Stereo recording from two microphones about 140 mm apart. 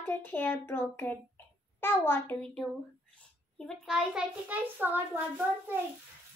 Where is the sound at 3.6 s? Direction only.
Centre (ahead or behind).